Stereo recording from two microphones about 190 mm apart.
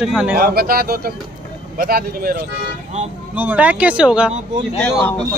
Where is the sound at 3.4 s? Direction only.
10° right (ahead or behind).